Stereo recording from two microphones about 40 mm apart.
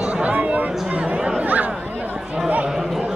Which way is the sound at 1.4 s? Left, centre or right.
Right.